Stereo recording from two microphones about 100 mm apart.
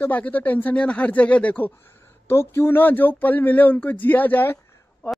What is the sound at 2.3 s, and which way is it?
Speech, 25° left (ahead or behind).